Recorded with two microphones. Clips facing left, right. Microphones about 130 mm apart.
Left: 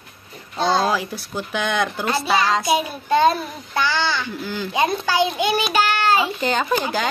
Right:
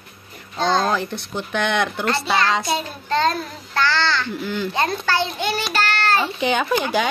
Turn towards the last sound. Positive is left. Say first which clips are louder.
# right 1 dB
turn(degrees=0)  # may be behind; listen again after turning